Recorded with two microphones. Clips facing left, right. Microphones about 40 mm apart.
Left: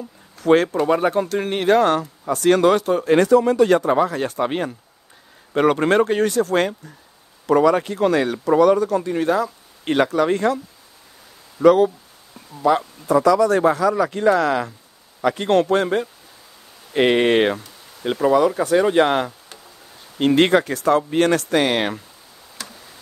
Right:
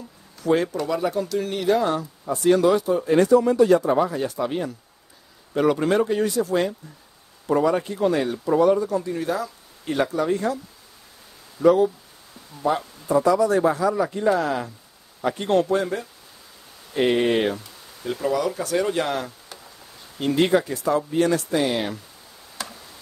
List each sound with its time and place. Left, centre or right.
0.4 s a man's voice: left
7.4 s speech: left
11.6 s speech: left
16.9 s speech: left
18.0 s speech: left
19.0 s speech: left
22.6 s tick: centre